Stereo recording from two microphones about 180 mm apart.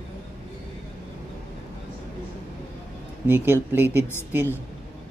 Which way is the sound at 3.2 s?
10° right (ahead or behind).